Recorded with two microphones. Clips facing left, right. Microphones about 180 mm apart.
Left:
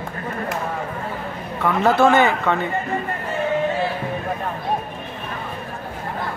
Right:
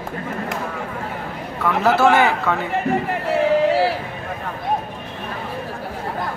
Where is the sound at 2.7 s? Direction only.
90° right.